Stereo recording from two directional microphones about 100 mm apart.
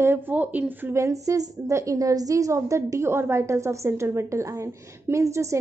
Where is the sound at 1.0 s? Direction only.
35° right (ahead or behind).